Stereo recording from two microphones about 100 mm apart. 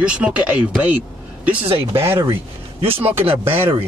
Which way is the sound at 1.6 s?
65° right (ahead or behind).